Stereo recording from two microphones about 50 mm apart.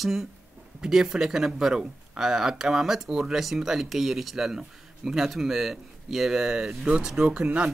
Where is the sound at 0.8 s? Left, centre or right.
Centre.